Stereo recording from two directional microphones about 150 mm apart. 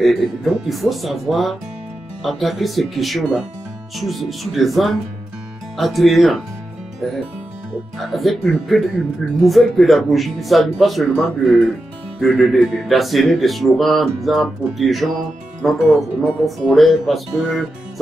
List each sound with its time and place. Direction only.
0.0 s speech: centre (ahead or behind)
8.0 s speech: centre (ahead or behind)